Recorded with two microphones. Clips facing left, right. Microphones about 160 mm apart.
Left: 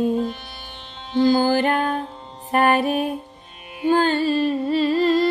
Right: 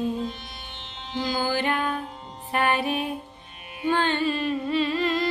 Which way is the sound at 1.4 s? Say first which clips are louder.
Left 6 dB; 45° left (ahead or behind).